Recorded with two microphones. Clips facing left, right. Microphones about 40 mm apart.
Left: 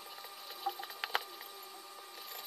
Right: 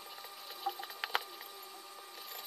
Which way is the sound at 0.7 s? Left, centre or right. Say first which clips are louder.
Even; centre.